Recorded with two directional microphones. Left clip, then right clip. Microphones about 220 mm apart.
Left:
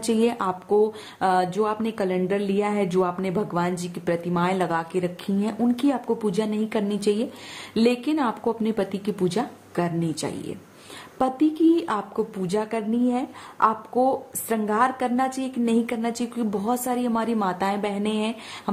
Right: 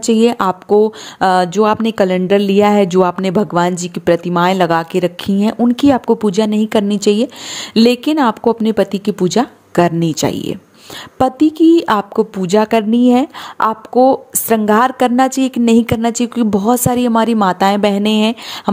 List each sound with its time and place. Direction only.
0.0 s speech: 35° right (ahead or behind)